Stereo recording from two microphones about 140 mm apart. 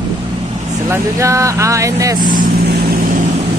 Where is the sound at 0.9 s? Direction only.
20° right (ahead or behind).